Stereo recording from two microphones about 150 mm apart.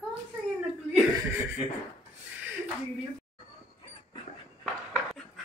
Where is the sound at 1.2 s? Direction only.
20° right (ahead or behind).